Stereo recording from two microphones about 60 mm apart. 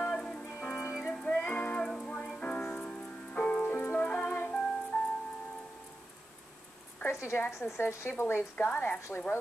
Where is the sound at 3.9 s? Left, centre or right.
Left.